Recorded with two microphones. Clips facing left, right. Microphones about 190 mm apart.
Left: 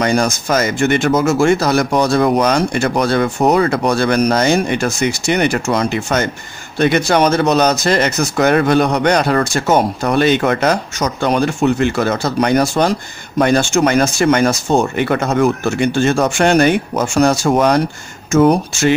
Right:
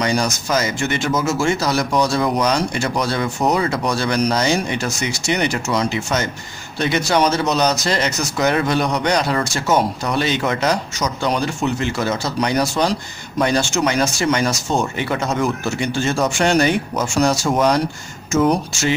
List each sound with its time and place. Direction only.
0.0 s speech: 55° left (ahead or behind)